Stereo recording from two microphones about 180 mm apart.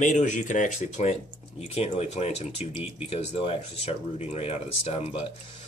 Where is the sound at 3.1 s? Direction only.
30° left (ahead or behind).